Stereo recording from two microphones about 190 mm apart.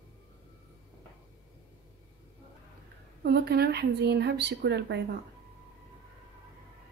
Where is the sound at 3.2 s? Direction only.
60° right (ahead or behind).